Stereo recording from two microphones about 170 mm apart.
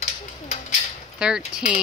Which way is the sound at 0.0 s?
40° left (ahead or behind).